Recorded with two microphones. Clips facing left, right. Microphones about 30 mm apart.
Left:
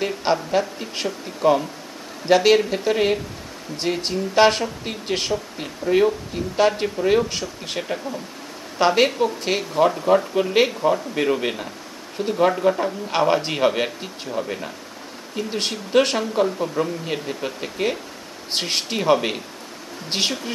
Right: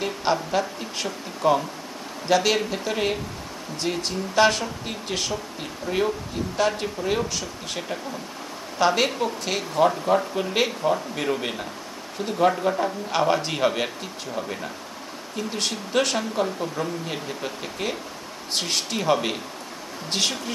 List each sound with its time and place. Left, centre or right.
0.0 s a man's voice: centre
2.2 s a man's voice: centre
4.0 s a man's voice: left
8.7 s speech: centre
9.8 s a man's voice: centre
16.2 s a man's voice: centre
18.5 s speech: left